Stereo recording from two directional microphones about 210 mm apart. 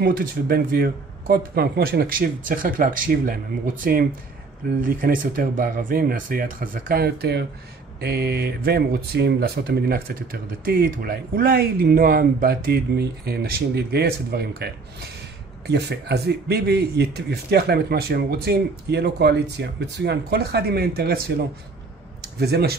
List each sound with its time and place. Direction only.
0.0 s speech: 45° right (ahead or behind)
22.4 s speech: 50° right (ahead or behind)